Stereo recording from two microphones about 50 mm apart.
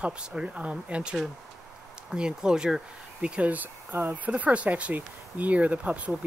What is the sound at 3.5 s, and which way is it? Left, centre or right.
Speech, right.